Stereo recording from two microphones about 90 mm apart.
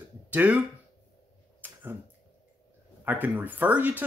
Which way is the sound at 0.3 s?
15° right (ahead or behind).